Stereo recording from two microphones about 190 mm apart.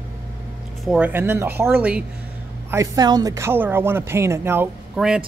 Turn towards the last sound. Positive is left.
turn(degrees=-5)  # may be behind; listen again after turning